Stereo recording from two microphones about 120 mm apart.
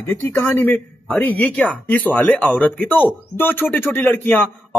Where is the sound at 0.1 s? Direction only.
20° left (ahead or behind).